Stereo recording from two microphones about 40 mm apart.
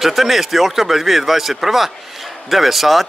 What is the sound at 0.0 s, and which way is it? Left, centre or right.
Speech, centre.